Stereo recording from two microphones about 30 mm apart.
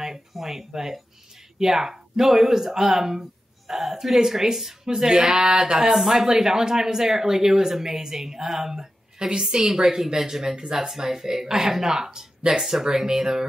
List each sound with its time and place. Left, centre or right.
0.3 s speech: centre; by 5.8 s right
5.9 s speech: centre